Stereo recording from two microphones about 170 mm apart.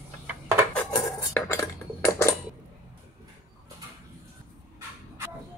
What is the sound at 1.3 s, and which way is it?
Cutlery, 15° left (ahead or behind).